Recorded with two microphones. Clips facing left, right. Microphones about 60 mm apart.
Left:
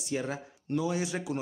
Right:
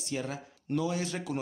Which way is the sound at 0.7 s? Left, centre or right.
Centre.